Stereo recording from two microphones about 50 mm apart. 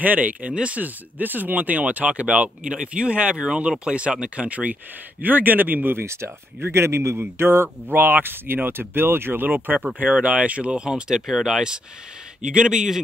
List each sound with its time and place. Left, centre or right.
0.0 s speech: right
5.9 s speech: right
7.2 s speech: right
9.9 s speech: right
11.2 s speech: centre
12.5 s speech: centre